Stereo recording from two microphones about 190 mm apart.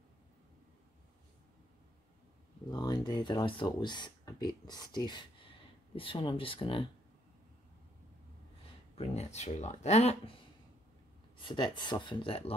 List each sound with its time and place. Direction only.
2.7 s speech: 20° left (ahead or behind)
8.9 s speech: 35° left (ahead or behind)
11.4 s speech: 25° left (ahead or behind)